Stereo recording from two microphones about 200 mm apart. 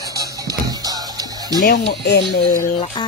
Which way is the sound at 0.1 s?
15° right (ahead or behind).